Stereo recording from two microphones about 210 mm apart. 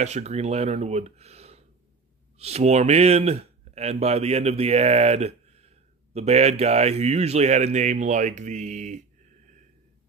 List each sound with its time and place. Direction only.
0.0 s speech: 30° right (ahead or behind)